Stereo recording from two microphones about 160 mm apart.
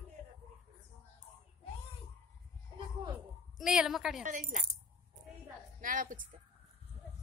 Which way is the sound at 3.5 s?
Centre (ahead or behind).